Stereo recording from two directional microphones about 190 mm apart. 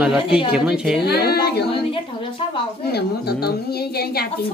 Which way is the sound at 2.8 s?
55° left (ahead or behind).